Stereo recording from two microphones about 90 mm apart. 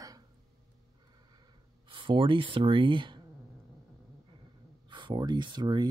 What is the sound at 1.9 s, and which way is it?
Speech, 65° right (ahead or behind).